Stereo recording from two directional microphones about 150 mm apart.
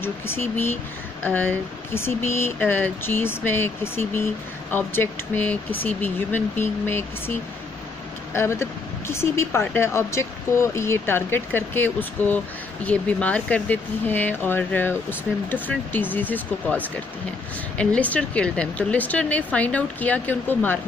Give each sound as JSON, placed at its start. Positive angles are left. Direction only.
{"t": 0.0, "sound": "speech", "side_deg": 15}